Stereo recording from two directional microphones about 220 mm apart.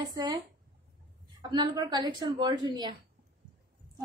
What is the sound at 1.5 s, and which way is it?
A woman's voice, 20° right (ahead or behind).